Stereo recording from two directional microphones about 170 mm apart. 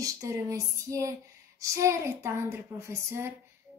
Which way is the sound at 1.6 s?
15° right (ahead or behind).